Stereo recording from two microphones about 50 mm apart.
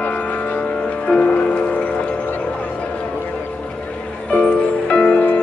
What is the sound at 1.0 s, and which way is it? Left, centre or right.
Music, left.